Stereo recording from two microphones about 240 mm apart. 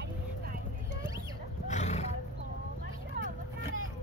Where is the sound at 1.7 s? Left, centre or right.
Left.